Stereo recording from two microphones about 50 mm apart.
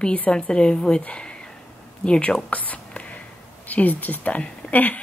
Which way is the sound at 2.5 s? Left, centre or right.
Left.